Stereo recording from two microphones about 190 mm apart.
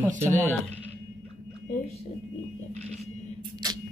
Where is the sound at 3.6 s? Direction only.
20° right (ahead or behind).